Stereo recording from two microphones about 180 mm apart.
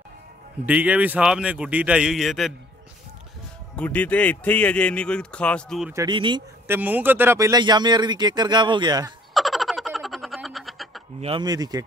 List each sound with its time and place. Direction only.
0.7 s a man's voice: 10° right (ahead or behind)
3.7 s speech: 10° left (ahead or behind)
6.0 s a man's voice: 25° right (ahead or behind)
6.7 s a man's voice: 10° right (ahead or behind)
9.3 s a sound: centre (ahead or behind)
11.1 s a man's voice: 30° right (ahead or behind)